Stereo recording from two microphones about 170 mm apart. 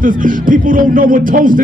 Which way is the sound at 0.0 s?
50° right (ahead or behind).